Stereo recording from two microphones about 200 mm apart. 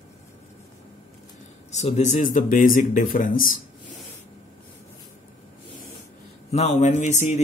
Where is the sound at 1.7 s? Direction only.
35° left (ahead or behind).